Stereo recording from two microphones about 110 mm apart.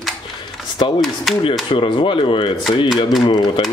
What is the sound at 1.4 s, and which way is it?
Speech, 50° left (ahead or behind).